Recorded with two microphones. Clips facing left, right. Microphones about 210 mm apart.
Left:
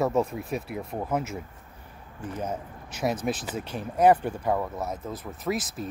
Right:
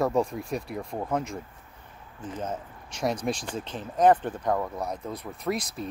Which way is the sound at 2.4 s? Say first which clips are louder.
Left 1 dB; 10° left (ahead or behind).